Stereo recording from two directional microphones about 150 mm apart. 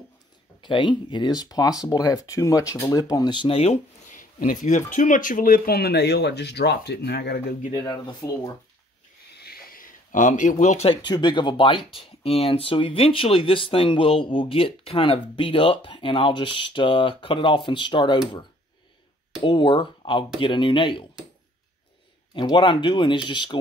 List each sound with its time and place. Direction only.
0.6 s speech: 30° left (ahead or behind)
4.2 s speech: 60° left (ahead or behind); by 7.5 s 90° left
8.1 s speech: 25° left (ahead or behind)
9.3 s a sound: 90° left; by 10.9 s 55° left (ahead or behind)
10.9 s speech: 30° left (ahead or behind)
19.4 s speech: 35° left (ahead or behind)
22.3 s speech: 35° left (ahead or behind)